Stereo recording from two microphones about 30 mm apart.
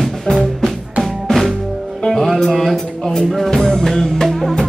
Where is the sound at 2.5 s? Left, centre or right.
Centre.